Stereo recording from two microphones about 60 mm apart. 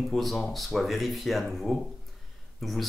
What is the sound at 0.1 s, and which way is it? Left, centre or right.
Speech, centre.